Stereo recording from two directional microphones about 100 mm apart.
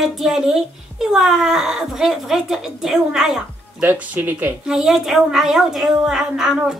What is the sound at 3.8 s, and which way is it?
Speech, 15° right (ahead or behind).